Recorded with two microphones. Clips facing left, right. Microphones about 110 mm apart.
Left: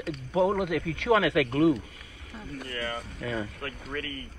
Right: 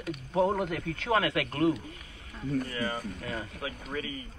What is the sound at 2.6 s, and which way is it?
Speech, 15° right (ahead or behind).